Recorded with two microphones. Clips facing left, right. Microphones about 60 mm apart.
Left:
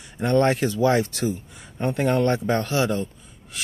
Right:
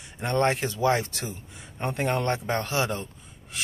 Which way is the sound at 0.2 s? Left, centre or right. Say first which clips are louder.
Left 5 dB; right.